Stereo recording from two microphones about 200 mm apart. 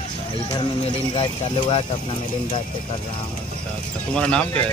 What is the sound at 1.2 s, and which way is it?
Speech, 25° left (ahead or behind).